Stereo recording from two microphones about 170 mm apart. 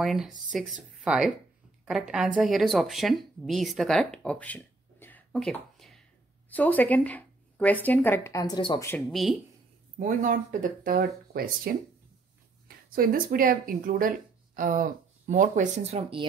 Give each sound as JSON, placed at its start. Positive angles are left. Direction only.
{"t": 0.0, "sound": "speech", "side_deg": 0}
{"t": 9.1, "sound": "speech", "side_deg": 0}
{"t": 9.9, "sound": "speech", "side_deg": -50}